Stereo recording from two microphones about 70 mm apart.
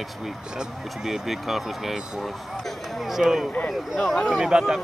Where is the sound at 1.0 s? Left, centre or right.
Centre.